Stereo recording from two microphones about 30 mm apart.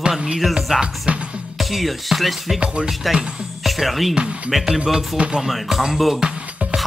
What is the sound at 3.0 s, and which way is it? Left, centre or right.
Music, centre.